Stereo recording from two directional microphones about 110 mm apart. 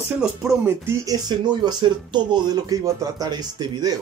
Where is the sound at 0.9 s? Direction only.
35° right (ahead or behind).